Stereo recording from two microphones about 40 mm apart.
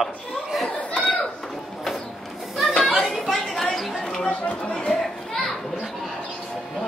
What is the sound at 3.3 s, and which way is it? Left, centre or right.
Chatter, centre.